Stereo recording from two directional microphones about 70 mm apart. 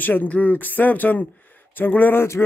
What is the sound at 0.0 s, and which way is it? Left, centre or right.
Speech, left.